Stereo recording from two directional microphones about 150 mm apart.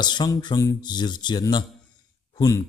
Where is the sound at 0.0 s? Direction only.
30° left (ahead or behind).